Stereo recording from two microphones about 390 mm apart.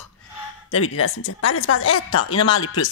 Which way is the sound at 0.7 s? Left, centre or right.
Left.